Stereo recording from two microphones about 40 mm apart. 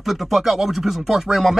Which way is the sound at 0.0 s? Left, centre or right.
Centre.